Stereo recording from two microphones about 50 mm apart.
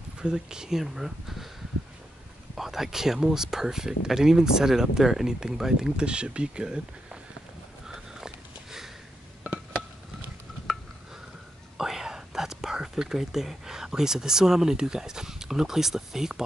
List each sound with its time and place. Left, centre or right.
0.2 s speech: centre
2.5 s speech: centre
11.7 s speech: centre